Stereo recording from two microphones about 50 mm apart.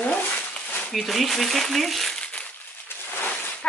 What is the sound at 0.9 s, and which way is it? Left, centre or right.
Speech, centre.